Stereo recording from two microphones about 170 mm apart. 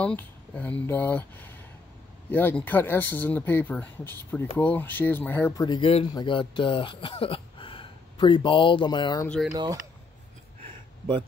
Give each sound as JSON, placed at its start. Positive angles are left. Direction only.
{"t": 0.0, "sound": "speech", "side_deg": 10}
{"t": 5.8, "sound": "speech", "side_deg": 35}
{"t": 9.5, "sound": "speech", "side_deg": -20}